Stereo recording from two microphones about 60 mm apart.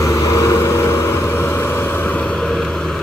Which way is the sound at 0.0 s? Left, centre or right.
Left.